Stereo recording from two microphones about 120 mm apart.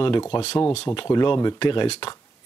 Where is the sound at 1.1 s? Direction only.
35° left (ahead or behind).